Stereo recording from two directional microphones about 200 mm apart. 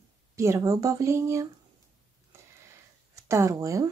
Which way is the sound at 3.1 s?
15° right (ahead or behind).